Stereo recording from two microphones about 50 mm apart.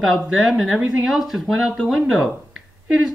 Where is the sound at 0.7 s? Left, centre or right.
Right.